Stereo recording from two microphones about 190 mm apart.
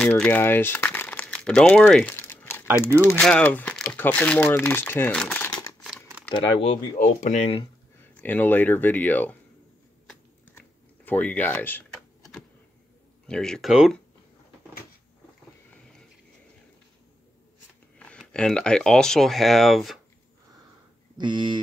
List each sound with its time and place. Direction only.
0.0 s speech: 10° left (ahead or behind)
6.3 s speech: 35° left (ahead or behind)
8.0 s speech: 10° left (ahead or behind)
10.5 s typing: 10° left (ahead or behind)
13.3 s speech: 5° left (ahead or behind)
17.9 s speech: 5° left (ahead or behind)
21.2 s speech: 25° right (ahead or behind)